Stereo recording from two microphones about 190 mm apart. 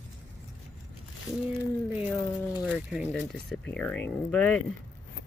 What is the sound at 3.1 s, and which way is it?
Speech, 5° left (ahead or behind).